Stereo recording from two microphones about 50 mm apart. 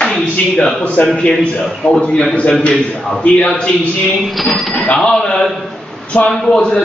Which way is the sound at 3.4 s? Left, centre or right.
Centre.